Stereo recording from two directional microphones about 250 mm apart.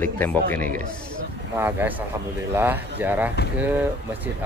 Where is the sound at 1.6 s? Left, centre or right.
Centre.